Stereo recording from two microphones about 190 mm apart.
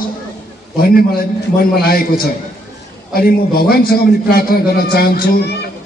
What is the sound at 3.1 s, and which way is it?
A man's voice, 55° left (ahead or behind).